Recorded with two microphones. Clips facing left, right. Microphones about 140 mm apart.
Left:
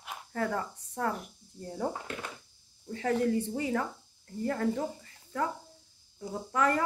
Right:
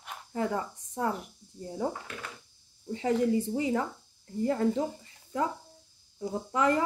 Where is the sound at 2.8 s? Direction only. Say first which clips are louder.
Right 2 dB; 15° right (ahead or behind).